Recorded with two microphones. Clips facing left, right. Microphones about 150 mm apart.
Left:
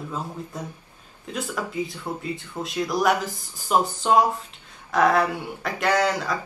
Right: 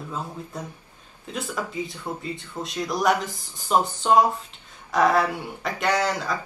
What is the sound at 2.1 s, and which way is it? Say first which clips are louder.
Speech: left 1 dB; centre (ahead or behind).